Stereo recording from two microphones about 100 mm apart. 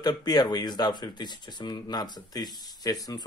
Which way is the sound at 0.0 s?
40° left (ahead or behind).